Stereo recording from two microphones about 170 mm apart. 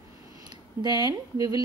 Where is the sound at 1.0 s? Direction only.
20° right (ahead or behind).